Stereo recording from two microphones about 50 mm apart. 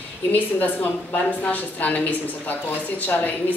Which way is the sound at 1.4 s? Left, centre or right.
Left.